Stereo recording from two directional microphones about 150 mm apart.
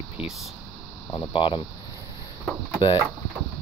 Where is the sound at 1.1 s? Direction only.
30° left (ahead or behind).